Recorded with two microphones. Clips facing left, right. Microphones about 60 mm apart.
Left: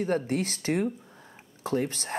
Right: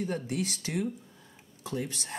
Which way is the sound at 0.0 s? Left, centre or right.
Left.